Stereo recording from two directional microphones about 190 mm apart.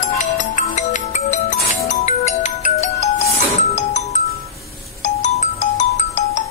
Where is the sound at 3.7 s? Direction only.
40° left (ahead or behind).